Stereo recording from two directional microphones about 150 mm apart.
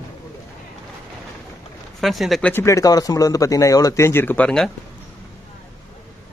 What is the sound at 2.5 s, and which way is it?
A man's voice, 20° left (ahead or behind).